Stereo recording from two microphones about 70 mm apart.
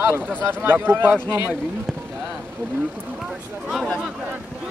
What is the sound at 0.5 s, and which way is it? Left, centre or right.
Speech, right.